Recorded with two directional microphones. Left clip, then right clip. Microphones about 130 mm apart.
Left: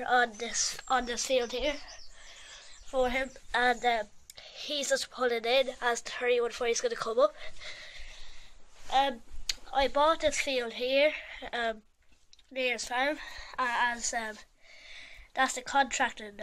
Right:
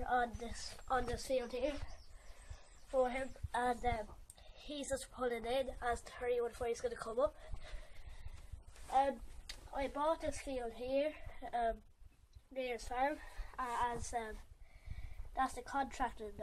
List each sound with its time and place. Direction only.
0.0 s speech: 20° left (ahead or behind)
2.9 s speech: 35° left (ahead or behind)
8.9 s speech: 30° left (ahead or behind)
15.3 s speech: 20° left (ahead or behind)